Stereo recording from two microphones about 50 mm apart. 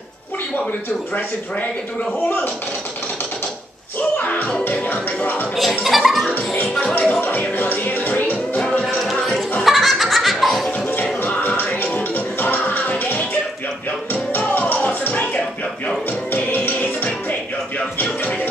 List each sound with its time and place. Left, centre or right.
2.2 s music: left
4.3 s music: left
5.9 s speech: centre
7.0 s music: left
8.8 s music: centre
9.7 s laughter: centre
11.2 s music: left
14.5 s music: left
16.5 s music: left